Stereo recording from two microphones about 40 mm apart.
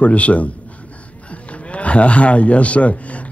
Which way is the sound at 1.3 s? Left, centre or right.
Left.